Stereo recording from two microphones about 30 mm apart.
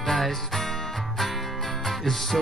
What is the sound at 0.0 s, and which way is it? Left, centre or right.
Music, centre.